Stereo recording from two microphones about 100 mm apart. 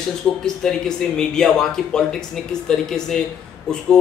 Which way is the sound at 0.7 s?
5° left (ahead or behind).